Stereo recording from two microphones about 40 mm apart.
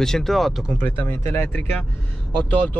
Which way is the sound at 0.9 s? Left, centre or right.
Left.